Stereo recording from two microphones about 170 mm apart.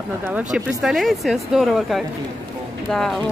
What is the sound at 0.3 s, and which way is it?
Speech, 5° right (ahead or behind).